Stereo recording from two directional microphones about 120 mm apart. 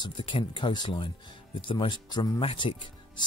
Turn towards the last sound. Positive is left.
turn(degrees=45)  # may be behind; listen again after turning